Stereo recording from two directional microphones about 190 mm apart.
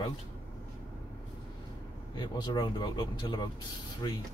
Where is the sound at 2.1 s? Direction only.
20° left (ahead or behind).